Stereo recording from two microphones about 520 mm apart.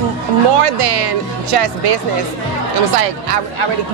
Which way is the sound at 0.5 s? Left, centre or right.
Right.